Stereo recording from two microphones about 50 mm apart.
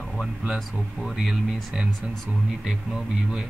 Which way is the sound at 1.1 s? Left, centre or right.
Centre.